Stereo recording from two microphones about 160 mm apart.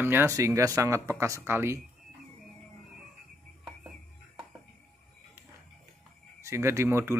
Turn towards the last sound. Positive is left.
turn(degrees=-15)  # may be behind; listen again after turning